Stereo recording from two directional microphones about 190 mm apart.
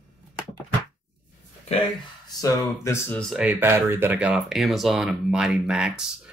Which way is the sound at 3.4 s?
10° right (ahead or behind).